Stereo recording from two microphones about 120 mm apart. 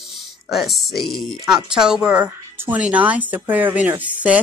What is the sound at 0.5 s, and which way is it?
A woman's voice, centre (ahead or behind).